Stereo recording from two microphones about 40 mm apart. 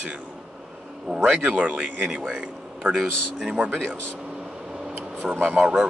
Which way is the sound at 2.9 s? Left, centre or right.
Right.